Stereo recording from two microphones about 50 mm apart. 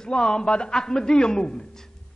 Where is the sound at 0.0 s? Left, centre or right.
Centre.